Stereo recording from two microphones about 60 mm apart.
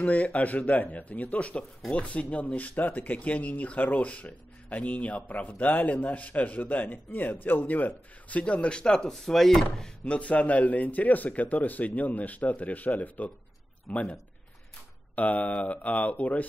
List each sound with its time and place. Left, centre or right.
0.0 s speech: left
9.1 s speech: centre
15.1 s speech: left